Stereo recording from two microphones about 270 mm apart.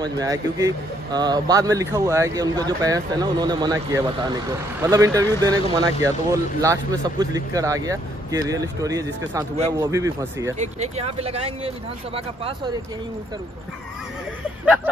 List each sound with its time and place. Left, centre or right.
0.0 s speech: centre
10.6 s speech: right